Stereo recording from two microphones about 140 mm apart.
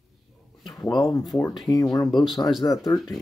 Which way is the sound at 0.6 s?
30° left (ahead or behind).